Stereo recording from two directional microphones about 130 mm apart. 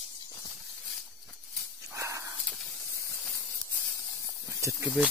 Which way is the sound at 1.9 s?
25° right (ahead or behind).